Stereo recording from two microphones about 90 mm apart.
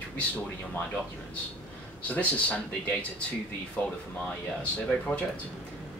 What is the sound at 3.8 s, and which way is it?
Speech, 20° left (ahead or behind).